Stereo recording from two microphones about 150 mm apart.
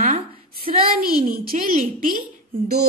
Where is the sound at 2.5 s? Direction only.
90° right.